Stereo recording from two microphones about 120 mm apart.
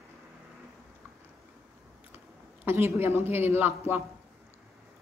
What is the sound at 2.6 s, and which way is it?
A man's voice, 20° right (ahead or behind).